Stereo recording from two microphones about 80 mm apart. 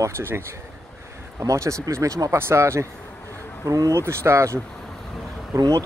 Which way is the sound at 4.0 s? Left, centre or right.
Right.